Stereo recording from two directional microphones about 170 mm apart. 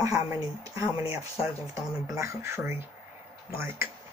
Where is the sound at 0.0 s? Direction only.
20° right (ahead or behind).